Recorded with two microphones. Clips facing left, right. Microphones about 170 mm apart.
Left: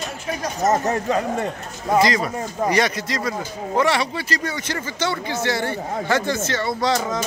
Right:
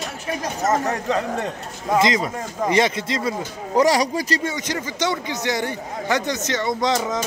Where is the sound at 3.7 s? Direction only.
40° right (ahead or behind).